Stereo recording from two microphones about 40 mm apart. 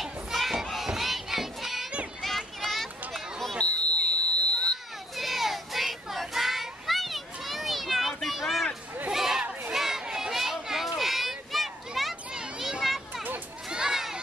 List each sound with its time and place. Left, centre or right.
0.0 s children playing: centre
0.8 s crowd: centre
2.2 s a sound: centre
3.6 s smoke detector: left
5.1 s child singing: centre
9.1 s crowd: centre
9.7 s children playing: centre
12.3 s children playing: centre
12.8 s children playing: centre
13.7 s children playing: centre